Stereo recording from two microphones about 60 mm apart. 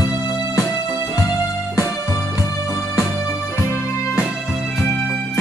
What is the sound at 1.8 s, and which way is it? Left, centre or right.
Music, left.